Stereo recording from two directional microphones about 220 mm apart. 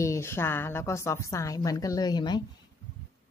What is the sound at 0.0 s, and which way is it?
A woman's voice, 10° left (ahead or behind).